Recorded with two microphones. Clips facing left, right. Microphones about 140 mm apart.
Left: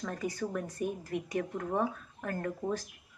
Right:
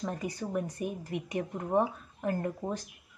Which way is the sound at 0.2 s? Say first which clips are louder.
Right 1 dB; 15° right (ahead or behind).